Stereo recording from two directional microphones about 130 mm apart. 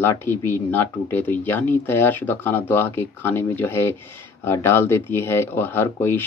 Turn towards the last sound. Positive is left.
turn(degrees=15)  # may be behind; listen again after turning